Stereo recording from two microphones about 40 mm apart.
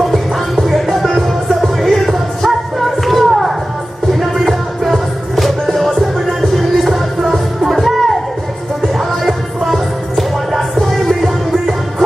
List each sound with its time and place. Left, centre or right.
0.0 s music: centre
9.2 s music: centre